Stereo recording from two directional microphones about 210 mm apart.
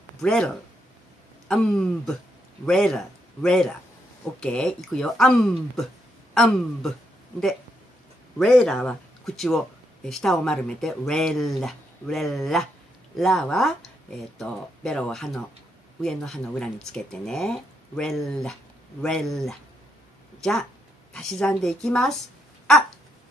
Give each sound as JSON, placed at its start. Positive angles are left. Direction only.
{"t": 0.2, "sound": "speech", "side_deg": 5}
{"t": 1.5, "sound": "speech", "side_deg": 0}
{"t": 8.4, "sound": "speech", "side_deg": 5}
{"t": 21.1, "sound": "speech", "side_deg": 5}